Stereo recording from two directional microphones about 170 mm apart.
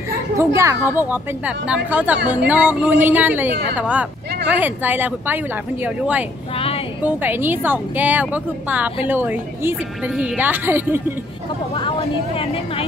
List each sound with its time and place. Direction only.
0.6 s a woman's voice: 15° right (ahead or behind)
7.0 s a woman's voice: 10° right (ahead or behind)
11.7 s speech: 30° left (ahead or behind)